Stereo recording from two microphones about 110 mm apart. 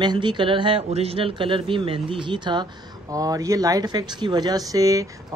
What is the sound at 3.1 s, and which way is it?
Speech, 30° right (ahead or behind).